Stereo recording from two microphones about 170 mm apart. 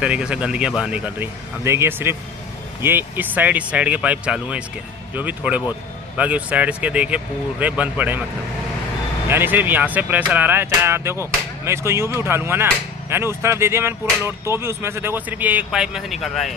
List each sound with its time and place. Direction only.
0.0 s speech: 5° right (ahead or behind)
9.3 s speech: 10° right (ahead or behind)